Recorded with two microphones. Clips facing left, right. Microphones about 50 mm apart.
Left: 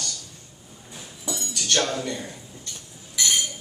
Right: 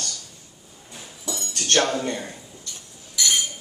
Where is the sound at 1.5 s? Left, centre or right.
Right.